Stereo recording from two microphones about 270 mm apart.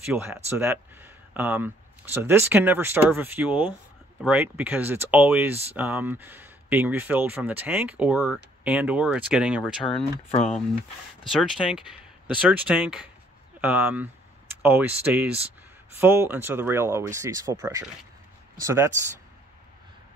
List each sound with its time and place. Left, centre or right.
0.0 s speech: centre
11.3 s speech: centre